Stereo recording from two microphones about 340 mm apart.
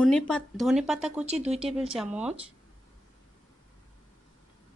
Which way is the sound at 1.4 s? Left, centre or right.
Centre.